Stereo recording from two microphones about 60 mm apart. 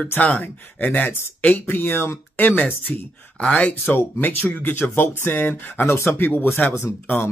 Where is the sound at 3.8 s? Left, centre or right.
Left.